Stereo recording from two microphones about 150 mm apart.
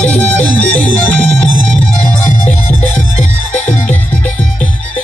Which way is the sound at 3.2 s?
55° left (ahead or behind).